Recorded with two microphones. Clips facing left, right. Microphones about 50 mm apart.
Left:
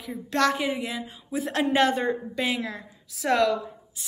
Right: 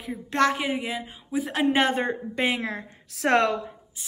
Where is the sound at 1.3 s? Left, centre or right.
Centre.